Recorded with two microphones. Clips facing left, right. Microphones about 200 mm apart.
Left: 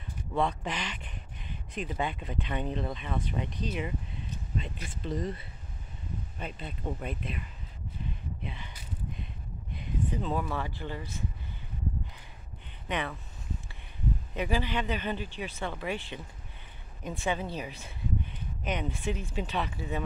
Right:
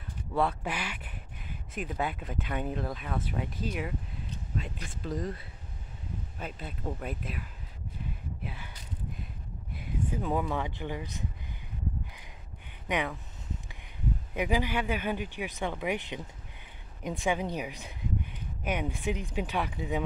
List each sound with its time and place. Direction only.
0.3 s speech: 5° right (ahead or behind)
8.5 s speech: 5° right (ahead or behind)
9.8 s speech: 10° right (ahead or behind)
12.8 s speech: 15° right (ahead or behind)
14.3 s speech: 10° right (ahead or behind)